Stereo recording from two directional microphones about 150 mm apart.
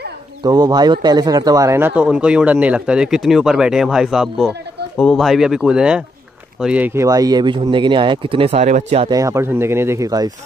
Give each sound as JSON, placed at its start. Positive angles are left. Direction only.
{"t": 0.4, "sound": "a man's voice", "side_deg": -25}
{"t": 9.1, "sound": "speech", "side_deg": -20}